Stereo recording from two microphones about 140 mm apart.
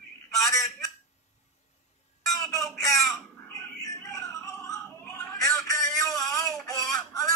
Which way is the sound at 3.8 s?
25° left (ahead or behind).